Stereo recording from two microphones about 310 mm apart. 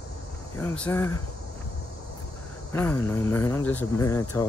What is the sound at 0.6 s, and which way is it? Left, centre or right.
Speech, centre.